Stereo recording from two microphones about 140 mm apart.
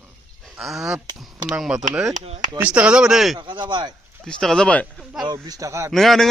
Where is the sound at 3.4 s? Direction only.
35° right (ahead or behind).